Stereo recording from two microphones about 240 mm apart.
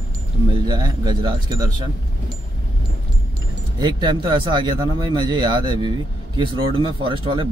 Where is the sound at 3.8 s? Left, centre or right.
Centre.